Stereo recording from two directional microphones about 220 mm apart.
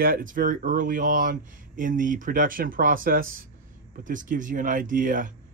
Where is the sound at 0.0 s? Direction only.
40° right (ahead or behind).